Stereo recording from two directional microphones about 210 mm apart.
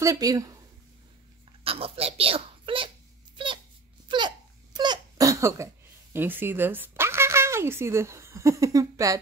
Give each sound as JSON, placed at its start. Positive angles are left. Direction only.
{"t": 0.0, "sound": "speech", "side_deg": -15}
{"t": 1.6, "sound": "a child's voice", "side_deg": -25}
{"t": 4.1, "sound": "hiccup", "side_deg": -20}
{"t": 4.7, "sound": "a sound", "side_deg": -20}
{"t": 6.1, "sound": "speech", "side_deg": -10}